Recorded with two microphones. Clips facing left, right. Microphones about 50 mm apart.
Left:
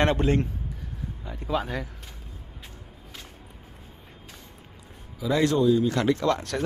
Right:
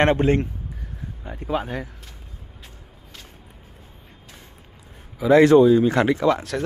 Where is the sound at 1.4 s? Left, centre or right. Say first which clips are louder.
Right 2 dB; centre.